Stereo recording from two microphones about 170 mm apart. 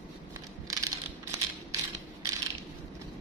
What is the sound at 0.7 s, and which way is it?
Crushing, 20° right (ahead or behind).